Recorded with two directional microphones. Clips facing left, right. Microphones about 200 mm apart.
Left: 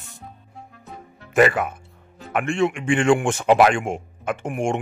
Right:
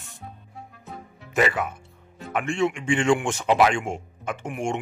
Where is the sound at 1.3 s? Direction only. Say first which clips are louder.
Left 6 dB; 55° left (ahead or behind).